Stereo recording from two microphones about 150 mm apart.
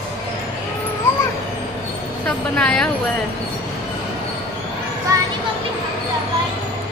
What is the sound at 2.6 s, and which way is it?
Speech, 5° left (ahead or behind).